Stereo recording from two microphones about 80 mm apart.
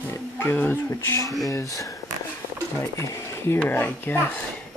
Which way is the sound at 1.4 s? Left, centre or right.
Left.